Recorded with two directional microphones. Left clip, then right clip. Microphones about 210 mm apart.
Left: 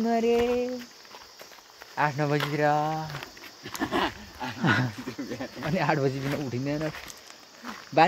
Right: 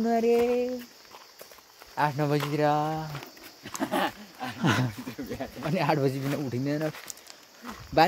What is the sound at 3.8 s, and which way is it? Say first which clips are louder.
Speech: even; 55° right (ahead or behind).